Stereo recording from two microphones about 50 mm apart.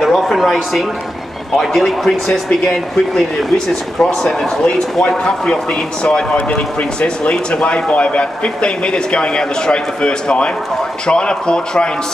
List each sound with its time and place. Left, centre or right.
0.0 s a sound: centre
1.6 s speech: centre
2.2 s speech: centre